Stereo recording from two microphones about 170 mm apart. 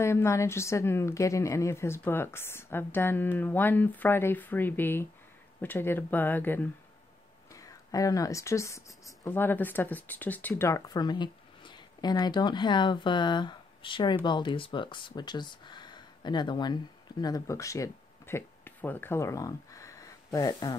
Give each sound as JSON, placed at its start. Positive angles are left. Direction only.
{"t": 0.0, "sound": "a woman's voice", "side_deg": 15}